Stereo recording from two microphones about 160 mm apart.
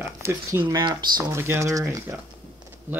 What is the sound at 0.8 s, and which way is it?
Speech, 25° right (ahead or behind).